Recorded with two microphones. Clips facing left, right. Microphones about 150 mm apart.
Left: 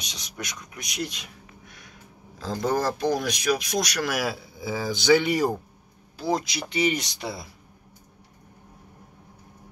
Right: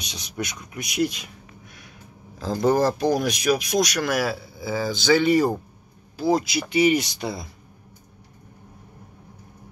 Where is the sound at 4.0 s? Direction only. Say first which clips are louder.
Right 3 dB; 10° left (ahead or behind).